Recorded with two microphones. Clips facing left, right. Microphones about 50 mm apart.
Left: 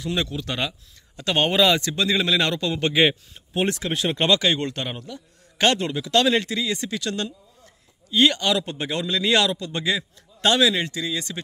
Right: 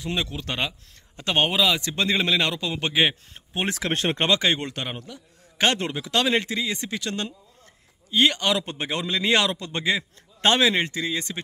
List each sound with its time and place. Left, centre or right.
0.0 s a man's voice: right
1.5 s a man's voice: centre
1.8 s a man's voice: right
2.3 s speech: centre
3.3 s speech: right
3.9 s speech: right
4.2 s a man's voice: right